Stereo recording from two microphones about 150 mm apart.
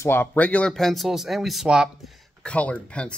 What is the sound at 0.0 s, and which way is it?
Speech, 15° left (ahead or behind).